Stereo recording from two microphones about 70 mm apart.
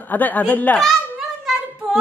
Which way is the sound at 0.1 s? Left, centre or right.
Left.